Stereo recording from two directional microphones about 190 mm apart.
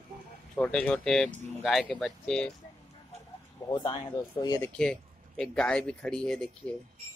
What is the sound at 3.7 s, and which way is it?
Speech, 25° left (ahead or behind).